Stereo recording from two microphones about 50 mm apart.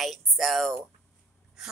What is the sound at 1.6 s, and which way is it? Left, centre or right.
Speech, centre.